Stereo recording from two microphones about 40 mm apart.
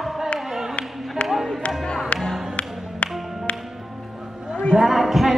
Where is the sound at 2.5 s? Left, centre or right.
Left.